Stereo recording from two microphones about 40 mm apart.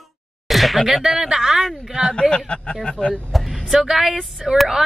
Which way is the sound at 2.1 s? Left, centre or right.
Left.